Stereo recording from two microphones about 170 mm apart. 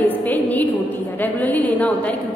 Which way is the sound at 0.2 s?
10° left (ahead or behind).